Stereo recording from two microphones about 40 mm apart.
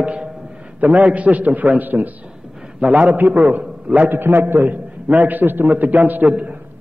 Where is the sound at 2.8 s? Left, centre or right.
Right.